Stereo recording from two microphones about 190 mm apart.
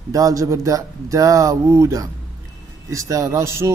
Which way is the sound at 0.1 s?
15° right (ahead or behind).